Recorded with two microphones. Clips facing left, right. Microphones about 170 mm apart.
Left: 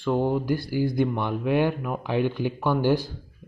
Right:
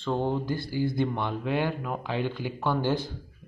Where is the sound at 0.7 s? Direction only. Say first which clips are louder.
Left 2 dB; 15° left (ahead or behind).